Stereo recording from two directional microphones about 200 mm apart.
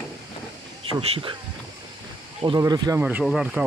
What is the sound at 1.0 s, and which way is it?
Speech, 30° right (ahead or behind).